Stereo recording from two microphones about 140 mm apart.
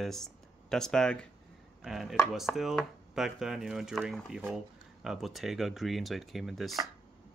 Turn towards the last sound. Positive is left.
turn(degrees=0)  # may be behind; listen again after turning